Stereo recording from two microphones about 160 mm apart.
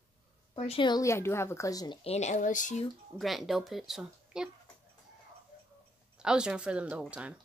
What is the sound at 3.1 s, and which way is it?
Speech, centre (ahead or behind).